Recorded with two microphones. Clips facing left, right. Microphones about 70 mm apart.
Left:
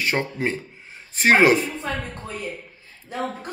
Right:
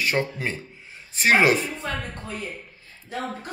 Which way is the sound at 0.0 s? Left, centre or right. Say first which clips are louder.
Left 1 dB; left.